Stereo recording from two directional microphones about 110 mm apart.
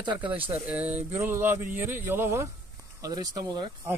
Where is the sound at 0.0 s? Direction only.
45° right (ahead or behind).